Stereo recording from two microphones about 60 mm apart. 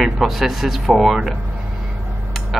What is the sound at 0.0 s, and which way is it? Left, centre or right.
Speech, centre.